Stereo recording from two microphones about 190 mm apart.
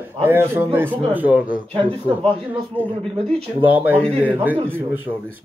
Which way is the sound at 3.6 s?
10° right (ahead or behind).